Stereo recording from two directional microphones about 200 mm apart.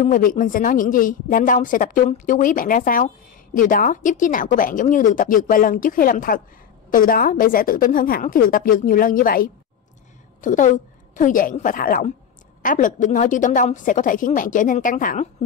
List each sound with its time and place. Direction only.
0.0 s speech: 45° left (ahead or behind)